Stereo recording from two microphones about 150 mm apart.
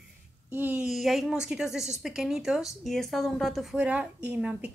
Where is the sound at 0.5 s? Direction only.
10° right (ahead or behind).